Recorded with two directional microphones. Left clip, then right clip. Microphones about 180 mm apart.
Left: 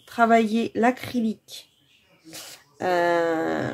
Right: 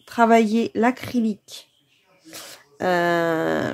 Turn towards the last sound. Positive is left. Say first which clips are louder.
# right 2 dB
turn(degrees=-35)  # may be behind; listen again after turning